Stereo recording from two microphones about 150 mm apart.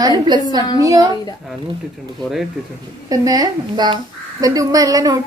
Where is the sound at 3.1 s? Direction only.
25° right (ahead or behind).